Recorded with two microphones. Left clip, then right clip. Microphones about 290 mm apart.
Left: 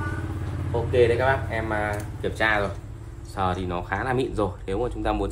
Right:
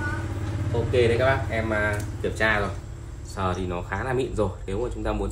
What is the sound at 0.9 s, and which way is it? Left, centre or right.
Speech, centre.